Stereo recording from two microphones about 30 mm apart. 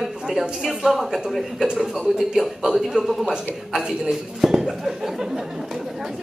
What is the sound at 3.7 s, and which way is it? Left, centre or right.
A man's voice, right.